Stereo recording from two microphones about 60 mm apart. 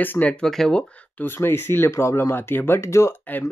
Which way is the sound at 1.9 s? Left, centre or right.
Left.